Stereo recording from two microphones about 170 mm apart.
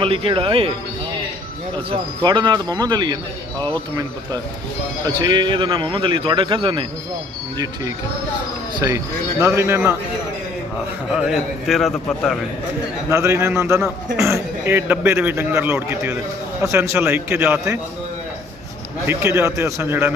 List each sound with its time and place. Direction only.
0.0 s speech: 30° right (ahead or behind)
1.9 s a man's voice: 25° right (ahead or behind)
3.5 s speech: 10° left (ahead or behind)
5.0 s a man's voice: 25° right (ahead or behind)
11.1 s a man's voice: centre (ahead or behind)
13.1 s a man's voice: 15° right (ahead or behind)
19.0 s a man's voice: 15° right (ahead or behind)